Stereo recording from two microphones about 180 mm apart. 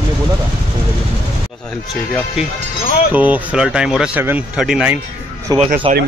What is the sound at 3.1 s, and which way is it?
Speech, 10° right (ahead or behind).